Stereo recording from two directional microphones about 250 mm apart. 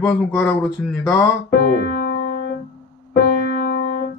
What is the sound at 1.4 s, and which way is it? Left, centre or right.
Keyboard, left.